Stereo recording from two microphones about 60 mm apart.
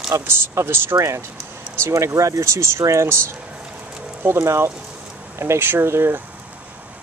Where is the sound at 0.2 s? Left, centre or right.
Right.